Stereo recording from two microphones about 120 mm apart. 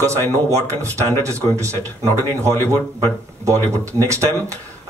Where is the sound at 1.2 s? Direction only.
25° right (ahead or behind).